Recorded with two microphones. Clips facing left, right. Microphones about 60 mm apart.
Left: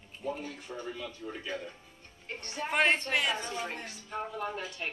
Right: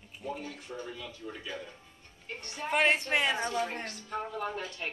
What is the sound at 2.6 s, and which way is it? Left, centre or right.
Speech, centre.